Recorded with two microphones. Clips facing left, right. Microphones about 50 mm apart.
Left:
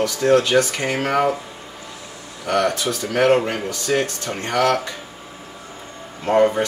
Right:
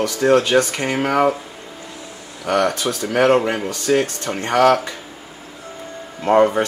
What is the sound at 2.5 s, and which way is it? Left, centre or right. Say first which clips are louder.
Speech: right 1 dB; centre.